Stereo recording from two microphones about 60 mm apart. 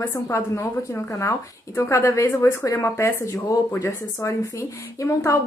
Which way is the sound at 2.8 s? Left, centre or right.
Left.